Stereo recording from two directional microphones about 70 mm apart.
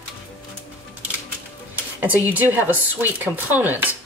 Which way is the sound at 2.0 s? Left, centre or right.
Right.